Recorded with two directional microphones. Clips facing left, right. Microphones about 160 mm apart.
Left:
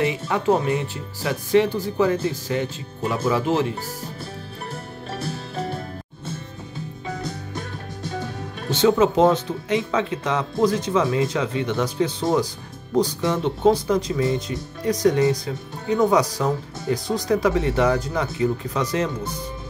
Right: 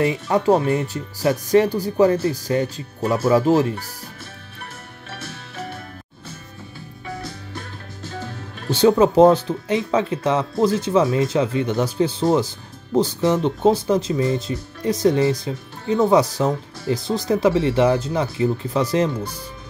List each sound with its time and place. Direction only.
0.0 s speech: 40° right (ahead or behind)
5.2 s music: 30° left (ahead or behind)
7.2 s music: 20° left (ahead or behind)
8.7 s speech: 35° right (ahead or behind)